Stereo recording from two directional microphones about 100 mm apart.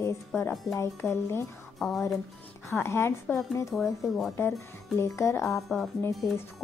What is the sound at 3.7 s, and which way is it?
Speech, centre (ahead or behind).